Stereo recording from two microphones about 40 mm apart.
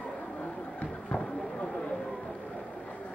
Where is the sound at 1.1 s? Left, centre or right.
Left.